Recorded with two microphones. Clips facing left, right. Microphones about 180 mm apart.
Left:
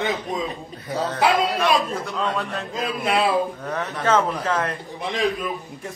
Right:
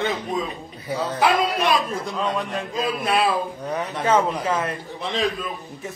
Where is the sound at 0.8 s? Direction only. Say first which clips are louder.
Even; 10° right (ahead or behind).